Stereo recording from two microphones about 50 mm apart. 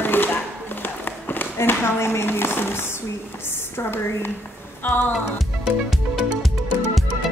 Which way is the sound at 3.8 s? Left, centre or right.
Left.